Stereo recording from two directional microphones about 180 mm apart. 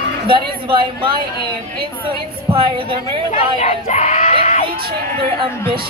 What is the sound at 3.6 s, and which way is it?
Speech, 40° left (ahead or behind).